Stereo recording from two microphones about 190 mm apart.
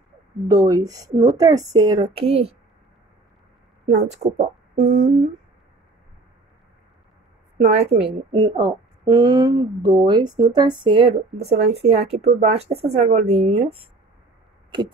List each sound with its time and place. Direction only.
0.5 s a woman's voice: 15° right (ahead or behind)
3.9 s speech: 35° right (ahead or behind)
7.6 s a woman's voice: 35° right (ahead or behind)